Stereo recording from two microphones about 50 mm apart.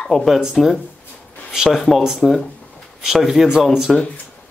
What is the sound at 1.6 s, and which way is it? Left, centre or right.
Speech, centre.